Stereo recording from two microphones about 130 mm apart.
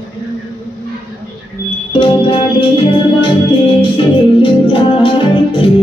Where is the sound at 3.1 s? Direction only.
40° left (ahead or behind).